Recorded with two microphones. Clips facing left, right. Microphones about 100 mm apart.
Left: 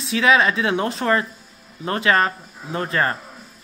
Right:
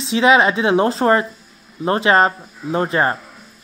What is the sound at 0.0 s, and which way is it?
Speech, 25° right (ahead or behind).